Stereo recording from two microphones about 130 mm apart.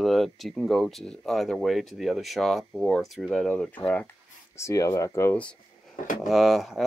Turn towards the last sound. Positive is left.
turn(degrees=0)  # may be behind; listen again after turning